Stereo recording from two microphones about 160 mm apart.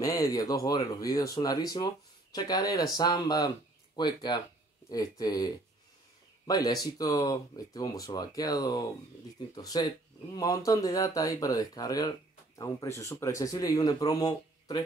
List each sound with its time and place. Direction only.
0.0 s speech: 20° left (ahead or behind)